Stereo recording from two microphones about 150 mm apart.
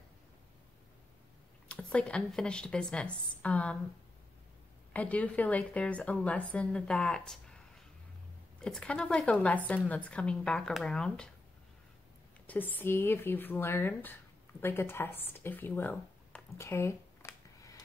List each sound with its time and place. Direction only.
1.7 s speech: 10° left (ahead or behind)
4.9 s speech: 10° left (ahead or behind)
12.4 s speech: 10° left (ahead or behind)